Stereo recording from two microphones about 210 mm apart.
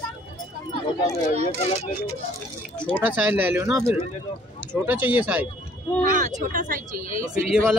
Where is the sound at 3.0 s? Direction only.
5° right (ahead or behind).